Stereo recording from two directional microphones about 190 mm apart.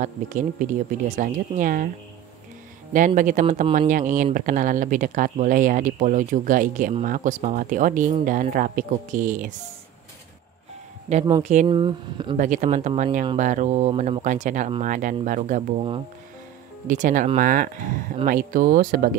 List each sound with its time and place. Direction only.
0.0 s speech: 45° right (ahead or behind)
3.2 s speech: 40° right (ahead or behind)
11.6 s speech: 25° right (ahead or behind)
12.4 s speech: 40° right (ahead or behind)
16.8 s speech: 45° right (ahead or behind)